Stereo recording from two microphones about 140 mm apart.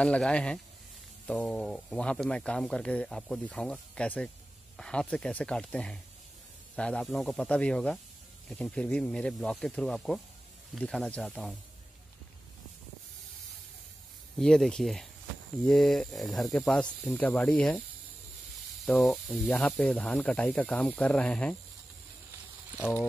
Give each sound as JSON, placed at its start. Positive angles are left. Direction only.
{"t": 0.0, "sound": "speech", "side_deg": 10}
{"t": 14.4, "sound": "speech", "side_deg": 5}
{"t": 18.9, "sound": "speech", "side_deg": 0}
{"t": 22.8, "sound": "speech", "side_deg": 15}